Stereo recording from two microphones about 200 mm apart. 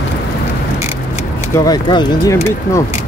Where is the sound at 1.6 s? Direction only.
20° left (ahead or behind).